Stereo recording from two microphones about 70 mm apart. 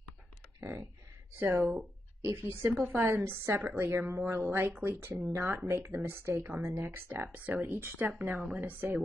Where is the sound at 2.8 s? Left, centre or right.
Right.